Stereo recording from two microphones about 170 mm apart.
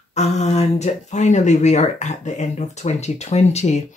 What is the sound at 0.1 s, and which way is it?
Speech, 40° left (ahead or behind).